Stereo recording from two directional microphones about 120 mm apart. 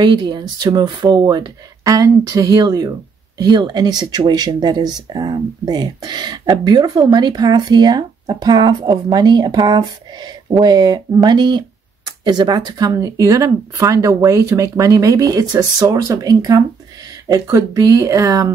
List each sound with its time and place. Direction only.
0.0 s speech: 40° right (ahead or behind)